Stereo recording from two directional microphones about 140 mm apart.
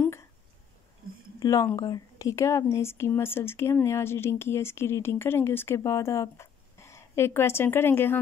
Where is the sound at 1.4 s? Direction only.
25° left (ahead or behind).